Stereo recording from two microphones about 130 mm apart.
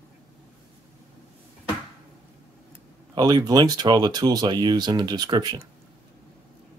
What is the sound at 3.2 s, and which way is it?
Speech, 30° right (ahead or behind).